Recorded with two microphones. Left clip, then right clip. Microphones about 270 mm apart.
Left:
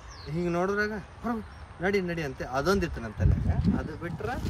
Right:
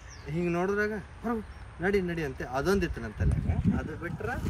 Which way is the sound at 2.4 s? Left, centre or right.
Centre.